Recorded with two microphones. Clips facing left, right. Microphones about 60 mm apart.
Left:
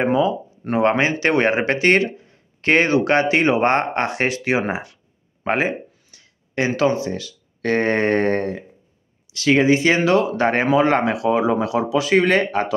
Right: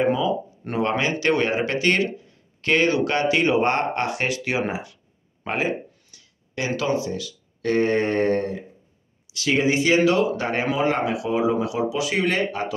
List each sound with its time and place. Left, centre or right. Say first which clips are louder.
0.0 s speech: left 3 dB; centre
0.7 s speech: left 5 dB; left
5.4 s a sound: left 4 dB; left
6.8 s speech: left 4 dB; left